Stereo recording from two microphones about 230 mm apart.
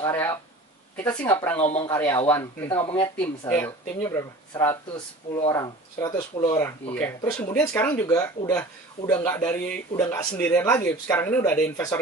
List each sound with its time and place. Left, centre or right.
0.0 s speech: centre
1.6 s speech: left
2.0 s speech: centre